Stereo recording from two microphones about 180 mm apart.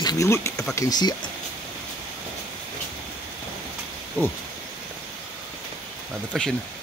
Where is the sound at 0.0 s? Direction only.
20° left (ahead or behind).